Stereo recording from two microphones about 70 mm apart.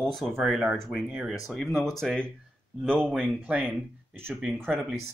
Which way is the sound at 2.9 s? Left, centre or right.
Right.